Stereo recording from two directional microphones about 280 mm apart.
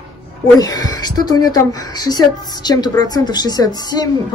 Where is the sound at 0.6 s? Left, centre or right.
Centre.